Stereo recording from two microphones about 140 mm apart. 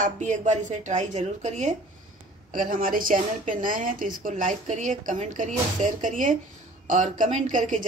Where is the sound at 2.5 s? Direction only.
75° right (ahead or behind).